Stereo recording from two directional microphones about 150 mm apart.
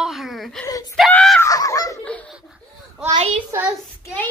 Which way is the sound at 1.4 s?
20° left (ahead or behind).